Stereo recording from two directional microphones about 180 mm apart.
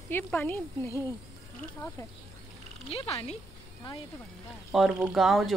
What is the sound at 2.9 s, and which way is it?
Speech, 35° left (ahead or behind).